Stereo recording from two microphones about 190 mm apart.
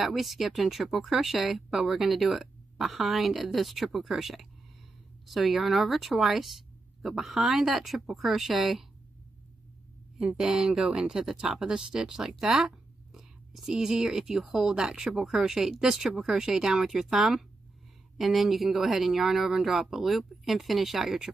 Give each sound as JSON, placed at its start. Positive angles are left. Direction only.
{"t": 0.0, "sound": "speech", "side_deg": 0}
{"t": 10.1, "sound": "speech", "side_deg": -5}